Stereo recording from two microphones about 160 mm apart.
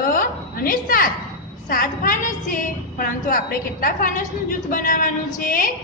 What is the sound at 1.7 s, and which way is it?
A woman's voice, 60° left (ahead or behind).